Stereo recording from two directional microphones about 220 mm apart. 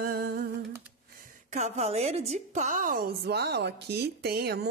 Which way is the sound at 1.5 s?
30° right (ahead or behind).